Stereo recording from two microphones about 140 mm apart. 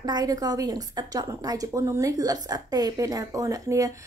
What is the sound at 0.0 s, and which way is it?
A woman's voice, 30° right (ahead or behind).